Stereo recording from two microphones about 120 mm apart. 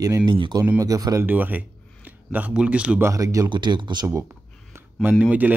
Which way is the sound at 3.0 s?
30° right (ahead or behind).